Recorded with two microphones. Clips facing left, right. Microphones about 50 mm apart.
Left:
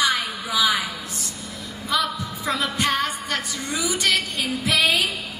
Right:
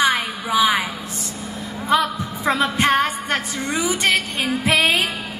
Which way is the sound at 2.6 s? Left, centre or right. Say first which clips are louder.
Right 5 dB; right.